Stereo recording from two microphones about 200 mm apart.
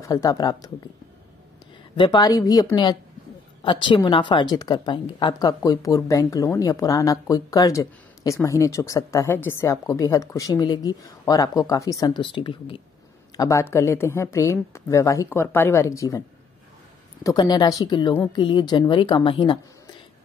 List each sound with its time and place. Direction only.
0.0 s a woman's voice: 15° left (ahead or behind)
2.0 s a woman's voice: 20° left (ahead or behind)
13.4 s a woman's voice: 15° left (ahead or behind)
17.2 s a woman's voice: 20° left (ahead or behind)